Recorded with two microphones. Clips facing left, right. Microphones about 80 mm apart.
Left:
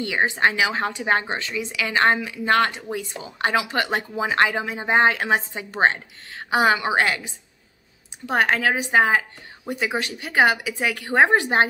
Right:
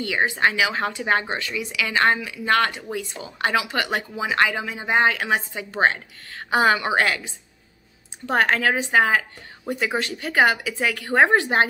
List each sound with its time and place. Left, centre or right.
0.0 s a woman's voice: left
6.5 s a woman's voice: centre